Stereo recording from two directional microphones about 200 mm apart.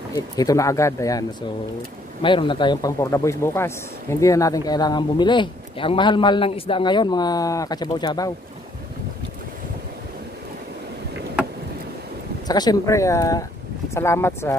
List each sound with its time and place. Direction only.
0.1 s speech: 20° left (ahead or behind)
2.2 s speech: 25° left (ahead or behind)
12.4 s speech: 20° left (ahead or behind)